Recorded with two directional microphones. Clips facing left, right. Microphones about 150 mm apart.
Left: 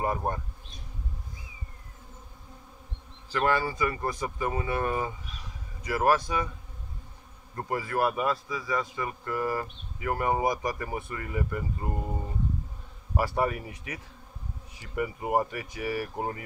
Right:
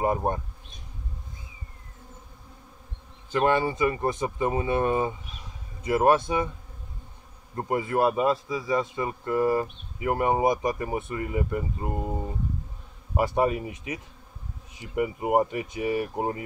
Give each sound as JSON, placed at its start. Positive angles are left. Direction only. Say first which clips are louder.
{"t": 0.0, "sound": "a man's voice", "louder": "right 4 dB", "side_deg": -20}
{"t": 3.3, "sound": "a man's voice", "louder": "right 4 dB", "side_deg": -20}
{"t": 7.5, "sound": "a man's voice", "louder": "right 4 dB", "side_deg": -20}